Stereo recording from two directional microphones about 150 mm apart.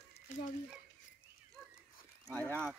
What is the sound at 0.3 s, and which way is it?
Frying, 55° left (ahead or behind).